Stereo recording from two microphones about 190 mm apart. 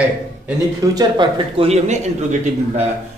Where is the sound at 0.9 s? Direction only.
25° right (ahead or behind).